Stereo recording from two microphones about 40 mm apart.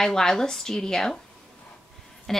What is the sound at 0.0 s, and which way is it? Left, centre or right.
Speech, centre.